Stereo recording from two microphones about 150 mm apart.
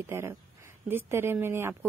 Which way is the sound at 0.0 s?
15° right (ahead or behind).